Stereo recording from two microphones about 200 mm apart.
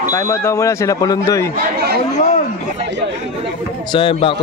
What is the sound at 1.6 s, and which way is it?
Speech, 55° right (ahead or behind).